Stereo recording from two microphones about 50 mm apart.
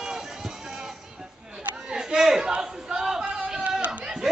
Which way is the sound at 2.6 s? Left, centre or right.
Centre.